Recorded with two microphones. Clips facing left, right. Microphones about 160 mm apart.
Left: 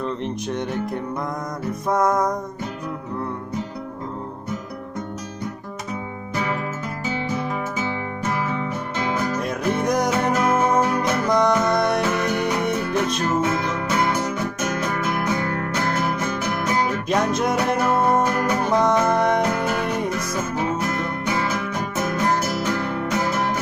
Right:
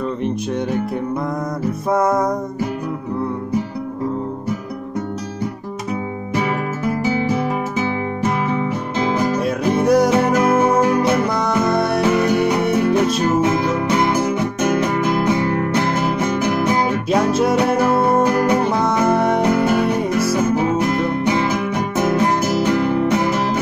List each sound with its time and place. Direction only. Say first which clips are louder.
1.9 s music: right 3 dB; 10° right (ahead or behind)
8.5 s music: right 6 dB; 15° right (ahead or behind)
9.4 s music: right 5 dB; 5° right (ahead or behind)
17.3 s music: right 5 dB; 5° right (ahead or behind)
18.2 s music: right 6 dB; 15° right (ahead or behind)